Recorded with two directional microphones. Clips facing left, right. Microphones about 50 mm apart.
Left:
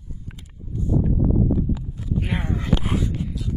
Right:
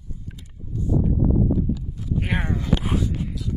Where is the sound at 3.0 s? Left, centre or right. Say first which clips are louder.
Even; left.